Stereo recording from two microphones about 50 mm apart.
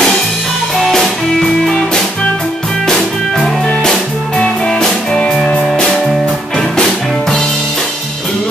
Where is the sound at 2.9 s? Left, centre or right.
Centre.